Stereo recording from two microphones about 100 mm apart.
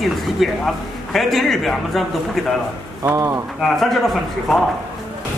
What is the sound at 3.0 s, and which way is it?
Speech, 35° right (ahead or behind).